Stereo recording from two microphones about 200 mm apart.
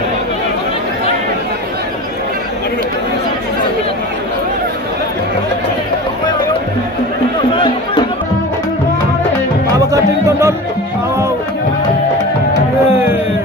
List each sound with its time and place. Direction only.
7.5 s chatter: 25° left (ahead or behind)
9.8 s music: 15° right (ahead or behind)
12.9 s music: 10° right (ahead or behind)